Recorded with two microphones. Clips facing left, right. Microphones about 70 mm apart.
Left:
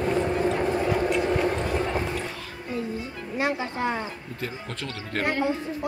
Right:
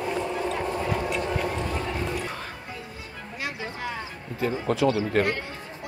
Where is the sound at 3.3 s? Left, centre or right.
Left.